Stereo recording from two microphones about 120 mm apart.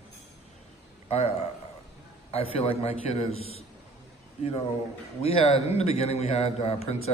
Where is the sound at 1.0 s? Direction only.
60° left (ahead or behind).